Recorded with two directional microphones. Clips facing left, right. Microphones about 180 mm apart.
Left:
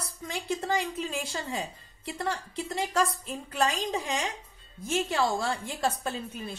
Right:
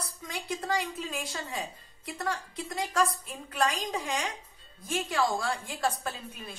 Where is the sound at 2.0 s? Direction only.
30° left (ahead or behind).